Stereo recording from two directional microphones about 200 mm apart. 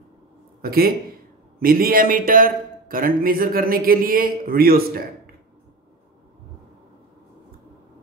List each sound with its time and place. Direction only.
0.6 s a man's voice: 50° right (ahead or behind)